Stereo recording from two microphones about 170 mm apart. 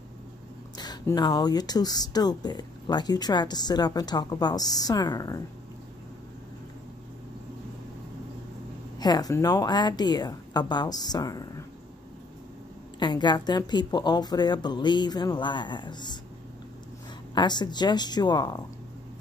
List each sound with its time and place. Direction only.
0.7 s speech: 25° left (ahead or behind)
8.9 s speech: 25° left (ahead or behind)
13.0 s speech: 25° left (ahead or behind)
17.3 s speech: 25° left (ahead or behind)